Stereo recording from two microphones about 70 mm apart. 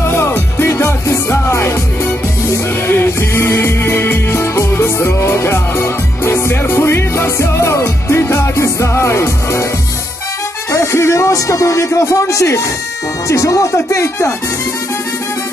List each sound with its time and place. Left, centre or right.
0.0 s music: left
2.9 s music: left
10.7 s speech: left